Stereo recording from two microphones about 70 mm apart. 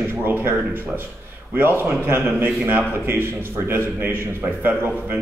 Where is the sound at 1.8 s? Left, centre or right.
Right.